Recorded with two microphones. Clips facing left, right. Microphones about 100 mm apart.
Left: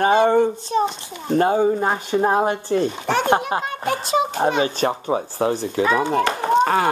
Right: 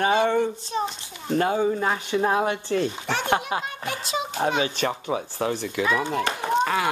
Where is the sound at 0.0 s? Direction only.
40° left (ahead or behind).